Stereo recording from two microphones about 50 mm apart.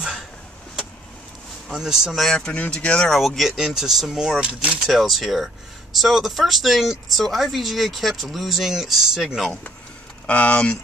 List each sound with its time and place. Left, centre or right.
1.7 s speech: centre
2.1 s speech: centre
2.5 s speech: left
3.0 s speech: centre
4.4 s speech: right
4.7 s speech: centre
10.2 s speech: left